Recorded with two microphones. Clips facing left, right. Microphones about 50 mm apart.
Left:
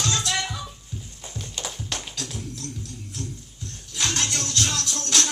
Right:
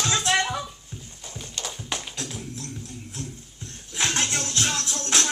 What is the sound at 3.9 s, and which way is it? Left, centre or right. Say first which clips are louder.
Music: right 1 dB; right.